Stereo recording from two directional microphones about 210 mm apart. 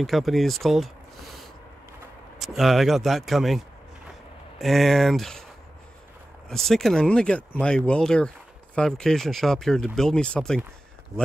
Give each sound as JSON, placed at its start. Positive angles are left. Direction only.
{"t": 0.0, "sound": "speech", "side_deg": 0}
{"t": 6.5, "sound": "speech", "side_deg": 0}